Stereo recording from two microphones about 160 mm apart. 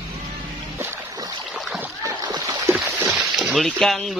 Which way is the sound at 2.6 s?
15° right (ahead or behind).